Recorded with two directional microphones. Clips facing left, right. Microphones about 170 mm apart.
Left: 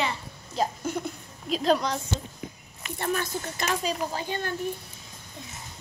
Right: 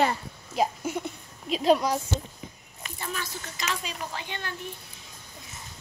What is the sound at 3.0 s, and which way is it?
Speech, 50° left (ahead or behind).